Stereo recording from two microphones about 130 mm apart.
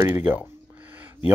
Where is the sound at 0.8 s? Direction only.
15° right (ahead or behind).